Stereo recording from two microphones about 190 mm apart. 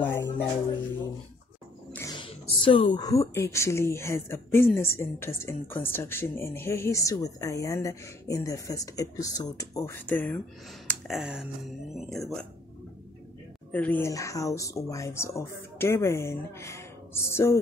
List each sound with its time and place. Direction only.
0.0 s a sound: 10° left (ahead or behind)
2.1 s a woman's voice: 25° left (ahead or behind); by 10.4 s 10° left (ahead or behind)
10.9 s speech: centre (ahead or behind)
13.7 s a woman's voice: 10° left (ahead or behind)